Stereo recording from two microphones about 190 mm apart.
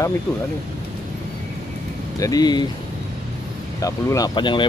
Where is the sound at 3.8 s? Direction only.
20° left (ahead or behind).